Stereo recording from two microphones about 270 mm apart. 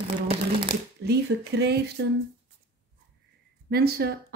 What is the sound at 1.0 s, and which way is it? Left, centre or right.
Speech, right.